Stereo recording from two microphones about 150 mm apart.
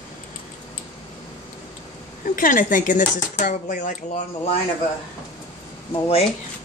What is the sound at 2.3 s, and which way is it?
Speech, 65° left (ahead or behind).